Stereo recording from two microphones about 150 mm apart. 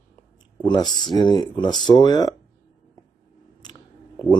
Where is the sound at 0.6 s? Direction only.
25° left (ahead or behind).